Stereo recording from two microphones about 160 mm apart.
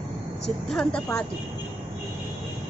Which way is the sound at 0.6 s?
5° left (ahead or behind).